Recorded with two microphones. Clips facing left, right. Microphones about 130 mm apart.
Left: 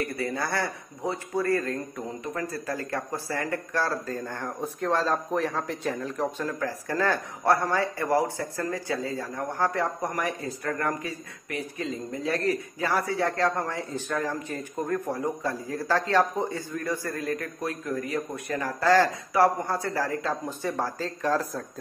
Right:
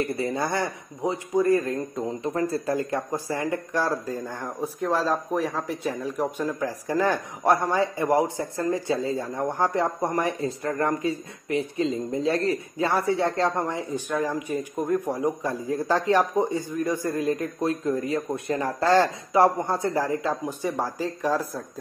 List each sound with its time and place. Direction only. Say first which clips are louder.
0.0 s speech: right 3 dB; 25° right (ahead or behind)